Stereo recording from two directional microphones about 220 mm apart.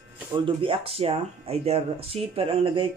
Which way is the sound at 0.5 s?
25° right (ahead or behind).